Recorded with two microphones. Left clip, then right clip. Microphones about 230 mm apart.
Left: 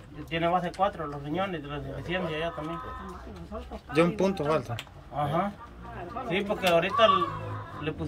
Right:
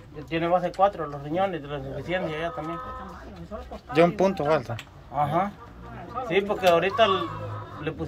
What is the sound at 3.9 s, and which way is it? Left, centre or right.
A man's voice, centre.